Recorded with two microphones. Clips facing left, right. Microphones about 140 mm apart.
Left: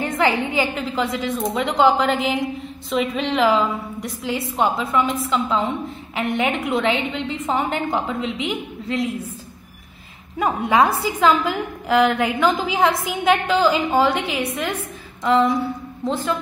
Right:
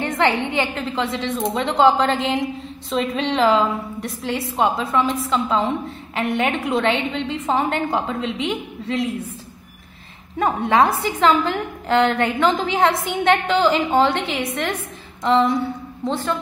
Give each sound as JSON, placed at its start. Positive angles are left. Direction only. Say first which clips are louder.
{"t": 0.0, "sound": "a woman's voice", "louder": "even", "side_deg": 10}
{"t": 0.9, "sound": "a woman's voice", "louder": "even", "side_deg": -25}
{"t": 1.8, "sound": "a woman's voice", "louder": "right 1 dB", "side_deg": 0}
{"t": 10.4, "sound": "a woman's voice", "louder": "right 1 dB", "side_deg": 5}